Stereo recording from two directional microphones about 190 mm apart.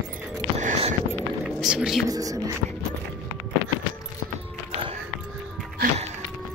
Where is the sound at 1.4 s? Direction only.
5° right (ahead or behind).